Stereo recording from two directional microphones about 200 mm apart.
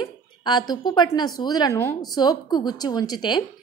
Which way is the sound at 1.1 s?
20° left (ahead or behind).